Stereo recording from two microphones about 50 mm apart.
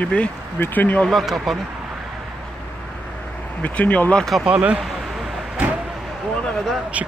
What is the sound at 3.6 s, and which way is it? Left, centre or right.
Speech, left.